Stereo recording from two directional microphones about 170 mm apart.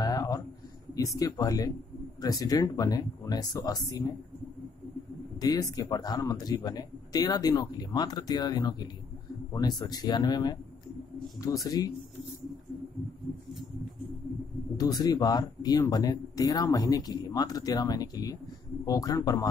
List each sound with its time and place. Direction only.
0.0 s a sound: 20° left (ahead or behind)
0.9 s speech: 20° left (ahead or behind)
5.4 s speech: 20° left (ahead or behind)
11.6 s speech: 20° left (ahead or behind)
14.8 s speech: 20° left (ahead or behind)